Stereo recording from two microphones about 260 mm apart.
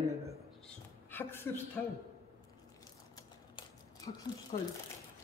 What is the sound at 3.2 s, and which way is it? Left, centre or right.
Typewriter, centre.